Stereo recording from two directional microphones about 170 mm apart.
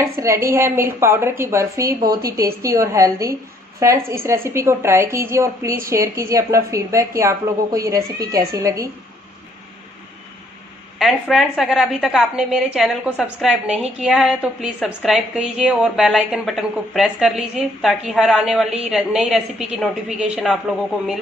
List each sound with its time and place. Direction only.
0.2 s a woman's voice: 15° right (ahead or behind)
11.0 s a woman's voice: centre (ahead or behind)